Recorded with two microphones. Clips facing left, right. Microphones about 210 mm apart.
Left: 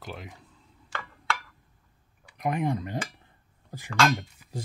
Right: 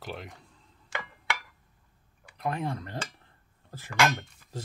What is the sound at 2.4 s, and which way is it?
Speech, 15° left (ahead or behind).